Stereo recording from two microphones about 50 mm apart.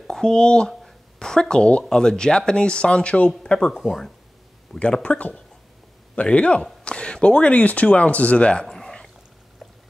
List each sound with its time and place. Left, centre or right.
0.1 s speech: centre
3.7 s speech: centre
4.7 s a man's voice: left